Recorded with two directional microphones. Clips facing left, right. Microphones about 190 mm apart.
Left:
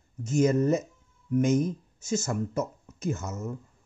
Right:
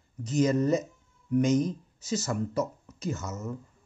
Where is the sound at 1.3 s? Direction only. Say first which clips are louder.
Even; 10° left (ahead or behind).